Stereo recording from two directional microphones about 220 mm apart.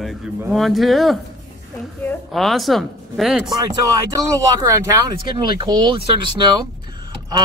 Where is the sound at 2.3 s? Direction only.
Centre (ahead or behind).